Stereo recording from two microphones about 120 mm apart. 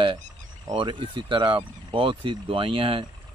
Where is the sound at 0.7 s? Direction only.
45° right (ahead or behind).